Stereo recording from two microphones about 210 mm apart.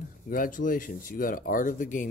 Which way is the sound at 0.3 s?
40° left (ahead or behind).